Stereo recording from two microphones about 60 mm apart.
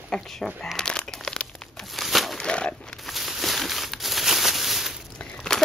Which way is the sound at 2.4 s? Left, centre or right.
Centre.